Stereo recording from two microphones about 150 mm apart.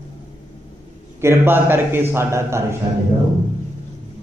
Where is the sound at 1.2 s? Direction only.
15° right (ahead or behind).